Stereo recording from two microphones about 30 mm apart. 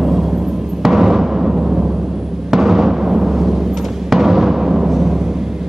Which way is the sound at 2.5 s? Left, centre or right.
Centre.